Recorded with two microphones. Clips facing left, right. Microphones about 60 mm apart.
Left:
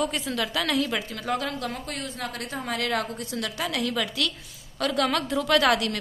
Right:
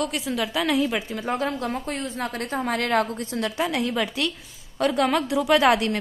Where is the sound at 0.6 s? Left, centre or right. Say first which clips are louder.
Right 4 dB; centre.